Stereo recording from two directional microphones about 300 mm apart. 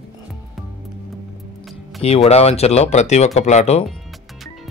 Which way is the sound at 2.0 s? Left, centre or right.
Centre.